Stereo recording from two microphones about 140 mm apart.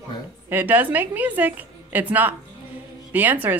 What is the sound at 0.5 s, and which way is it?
A woman's voice, 15° right (ahead or behind).